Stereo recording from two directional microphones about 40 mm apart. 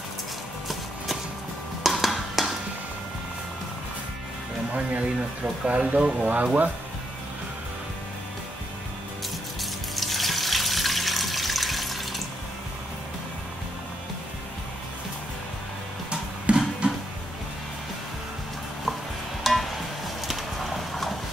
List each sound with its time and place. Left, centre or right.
1.8 s music: centre
4.7 s speech: right
5.8 s speech: right
6.2 s speech: right
9.6 s water tap: centre
16.5 s music: right
19.4 s music: centre
20.2 s horse: centre